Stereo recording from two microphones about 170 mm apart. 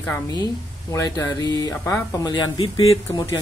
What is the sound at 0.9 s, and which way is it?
Speech, 25° left (ahead or behind).